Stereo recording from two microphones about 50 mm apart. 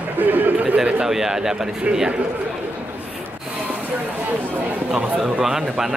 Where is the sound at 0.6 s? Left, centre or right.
Centre.